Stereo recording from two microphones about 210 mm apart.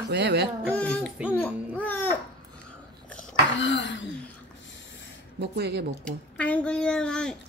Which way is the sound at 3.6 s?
60° left (ahead or behind).